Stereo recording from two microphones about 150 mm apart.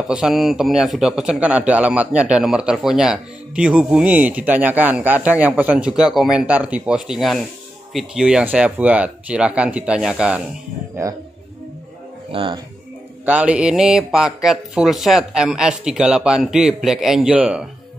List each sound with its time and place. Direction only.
0.1 s speech: 5° right (ahead or behind)
12.3 s speech: 35° right (ahead or behind)
13.2 s speech: 10° right (ahead or behind)